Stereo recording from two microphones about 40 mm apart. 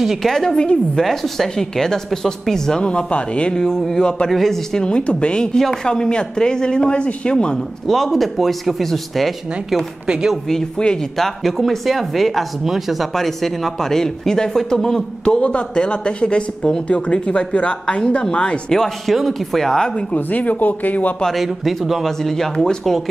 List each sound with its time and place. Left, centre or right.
0.0 s speech: centre
0.3 s speech: centre
2.8 s speech: left
3.5 s speech: centre
4.8 s speech: left
7.8 s speech: centre
10.0 s speech: centre
10.8 s speech: left
11.1 s speech: centre
13.1 s speech: centre
15.2 s speech: left
18.7 s speech: centre
20.2 s speech: left
21.3 s speech: centre